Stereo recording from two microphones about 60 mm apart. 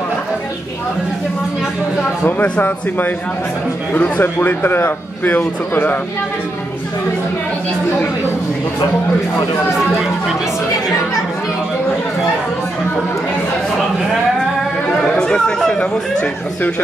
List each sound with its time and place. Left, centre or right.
3.9 s a man's voice: left
15.0 s speech: centre